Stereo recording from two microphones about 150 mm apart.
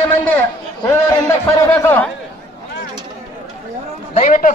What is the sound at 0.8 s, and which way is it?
A man's voice, 20° left (ahead or behind).